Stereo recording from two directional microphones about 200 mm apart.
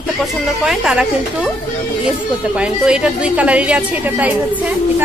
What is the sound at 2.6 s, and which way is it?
A woman's voice, 5° right (ahead or behind).